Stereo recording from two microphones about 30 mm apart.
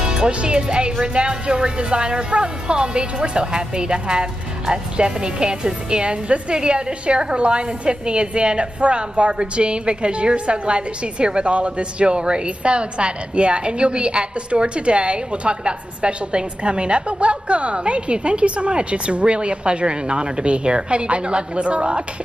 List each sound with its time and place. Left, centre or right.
0.0 s music: right
0.3 s a woman's voice: right